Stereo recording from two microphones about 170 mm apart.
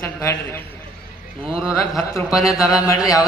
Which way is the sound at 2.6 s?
20° left (ahead or behind).